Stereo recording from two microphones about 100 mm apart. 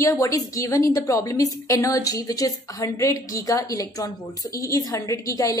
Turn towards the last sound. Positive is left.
turn(degrees=35)  # may be behind; listen again after turning